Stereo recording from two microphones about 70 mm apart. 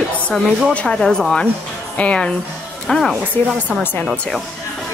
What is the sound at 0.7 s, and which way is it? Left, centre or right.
Speech, centre.